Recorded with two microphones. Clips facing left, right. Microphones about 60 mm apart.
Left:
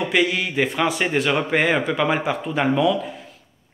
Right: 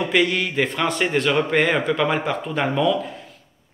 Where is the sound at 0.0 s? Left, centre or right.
Centre.